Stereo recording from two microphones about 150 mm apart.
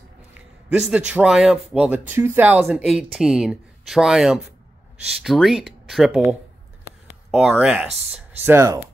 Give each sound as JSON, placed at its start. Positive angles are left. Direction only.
{"t": 0.3, "sound": "a man's voice", "side_deg": -5}
{"t": 7.2, "sound": "speech", "side_deg": -5}